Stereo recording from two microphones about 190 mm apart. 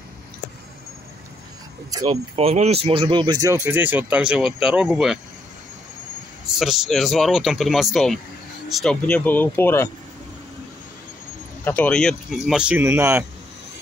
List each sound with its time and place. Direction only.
1.9 s speech: 20° right (ahead or behind)
2.3 s speech: 35° right (ahead or behind); by 5.2 s centre (ahead or behind)
6.4 s speech: centre (ahead or behind)
11.6 s speech: 10° left (ahead or behind); by 13.2 s 15° right (ahead or behind)